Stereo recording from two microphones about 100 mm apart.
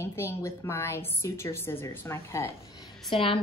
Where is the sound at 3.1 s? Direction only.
65° left (ahead or behind).